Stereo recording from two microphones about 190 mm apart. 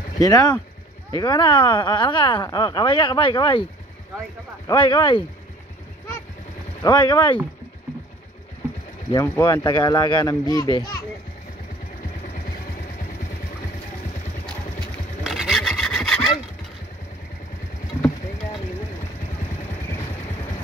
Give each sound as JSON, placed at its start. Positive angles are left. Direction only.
{"t": 0.2, "sound": "speech", "side_deg": 20}
{"t": 4.6, "sound": "speech", "side_deg": 20}
{"t": 6.8, "sound": "speech", "side_deg": 20}
{"t": 9.1, "sound": "speech", "side_deg": 15}
{"t": 15.2, "sound": "wood", "side_deg": 0}